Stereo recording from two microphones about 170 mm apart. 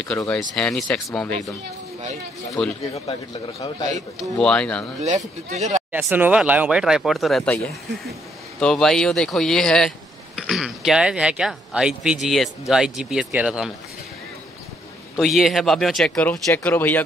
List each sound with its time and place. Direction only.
0.0 s speech: 5° left (ahead or behind)
2.6 s speech: 5° left (ahead or behind)
2.9 s a man's voice: 35° left (ahead or behind)
4.4 s speech: 5° left (ahead or behind)
5.0 s speech: 45° right (ahead or behind)
5.9 s speech: 10° right (ahead or behind)
15.1 s speech: centre (ahead or behind)